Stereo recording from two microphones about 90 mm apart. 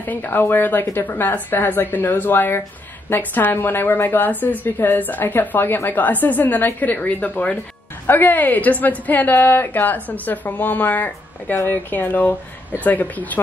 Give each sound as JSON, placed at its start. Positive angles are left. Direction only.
{"t": 0.0, "sound": "a woman's voice", "side_deg": 20}